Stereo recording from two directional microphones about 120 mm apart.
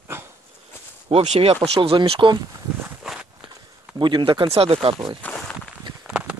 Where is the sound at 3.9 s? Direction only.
40° right (ahead or behind).